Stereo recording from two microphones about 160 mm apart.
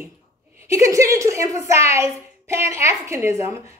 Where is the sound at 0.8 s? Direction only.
20° right (ahead or behind).